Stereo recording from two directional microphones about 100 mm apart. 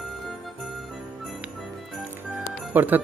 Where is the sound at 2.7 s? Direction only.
20° right (ahead or behind).